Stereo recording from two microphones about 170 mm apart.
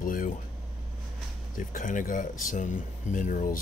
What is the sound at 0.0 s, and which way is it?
Vehicle, 55° left (ahead or behind).